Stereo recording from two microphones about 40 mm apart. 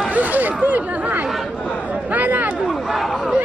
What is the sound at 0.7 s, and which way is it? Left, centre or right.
Speech, right.